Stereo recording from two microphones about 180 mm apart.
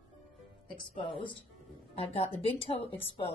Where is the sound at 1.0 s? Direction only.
25° left (ahead or behind).